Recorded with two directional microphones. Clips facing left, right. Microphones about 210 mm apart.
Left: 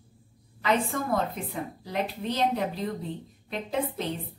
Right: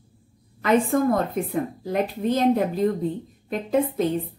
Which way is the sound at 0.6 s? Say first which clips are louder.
Right 8 dB; 50° right (ahead or behind).